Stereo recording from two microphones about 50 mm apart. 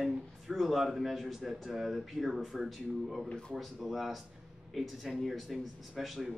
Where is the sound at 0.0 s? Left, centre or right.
Centre.